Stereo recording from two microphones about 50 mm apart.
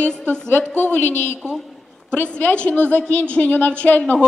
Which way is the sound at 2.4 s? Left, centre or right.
Left.